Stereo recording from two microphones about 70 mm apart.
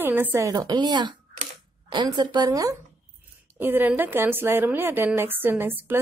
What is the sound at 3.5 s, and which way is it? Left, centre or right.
A woman's voice, right.